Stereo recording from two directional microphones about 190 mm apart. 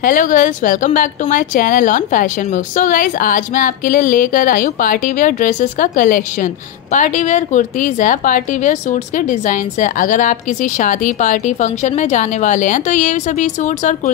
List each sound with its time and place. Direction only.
0.0 s a woman's voice: 45° left (ahead or behind)